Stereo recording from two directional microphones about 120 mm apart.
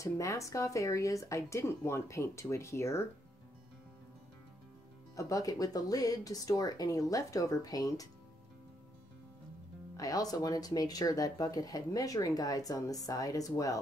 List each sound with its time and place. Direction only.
0.0 s speech: 25° left (ahead or behind)
5.1 s speech: 30° left (ahead or behind)
9.9 s speech: 30° left (ahead or behind)